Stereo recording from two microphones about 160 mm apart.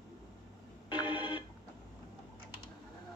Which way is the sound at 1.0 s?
30° left (ahead or behind).